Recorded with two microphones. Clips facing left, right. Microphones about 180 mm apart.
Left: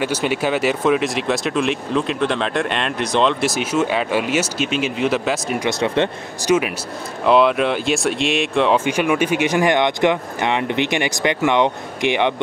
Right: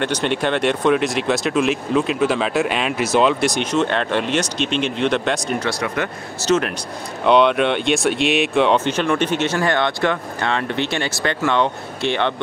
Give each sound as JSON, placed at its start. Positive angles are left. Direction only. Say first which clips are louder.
{"t": 0.0, "sound": "speech", "louder": "even", "side_deg": 5}
{"t": 5.7, "sound": "speech", "louder": "left 7 dB", "side_deg": 25}
{"t": 6.4, "sound": "speech", "louder": "left 1 dB", "side_deg": 10}